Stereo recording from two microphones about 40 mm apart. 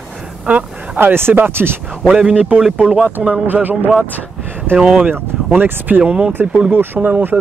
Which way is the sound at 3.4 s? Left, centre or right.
Right.